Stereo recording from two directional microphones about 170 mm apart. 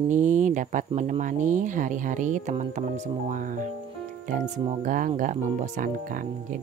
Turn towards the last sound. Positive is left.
turn(degrees=-50)  # may be behind; listen again after turning